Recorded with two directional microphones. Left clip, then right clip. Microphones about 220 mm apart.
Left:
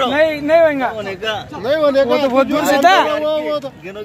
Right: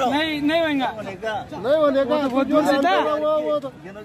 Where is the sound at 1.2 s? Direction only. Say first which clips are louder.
Left 3 dB; 15° right (ahead or behind).